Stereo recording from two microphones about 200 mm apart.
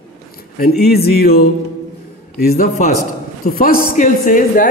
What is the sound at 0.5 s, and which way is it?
A man's voice, 50° left (ahead or behind).